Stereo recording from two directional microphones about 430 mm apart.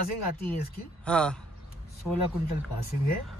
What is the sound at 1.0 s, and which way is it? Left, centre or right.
Speech, centre.